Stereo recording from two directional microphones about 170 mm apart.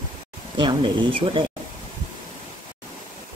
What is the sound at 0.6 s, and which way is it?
Speech, 30° right (ahead or behind).